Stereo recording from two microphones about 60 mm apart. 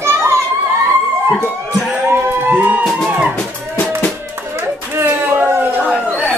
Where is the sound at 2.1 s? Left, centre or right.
Right.